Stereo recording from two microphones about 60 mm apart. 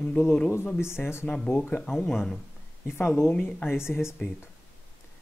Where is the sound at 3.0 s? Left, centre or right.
Left.